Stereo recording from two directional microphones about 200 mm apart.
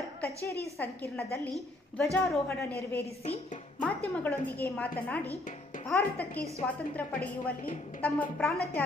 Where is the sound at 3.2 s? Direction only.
30° left (ahead or behind).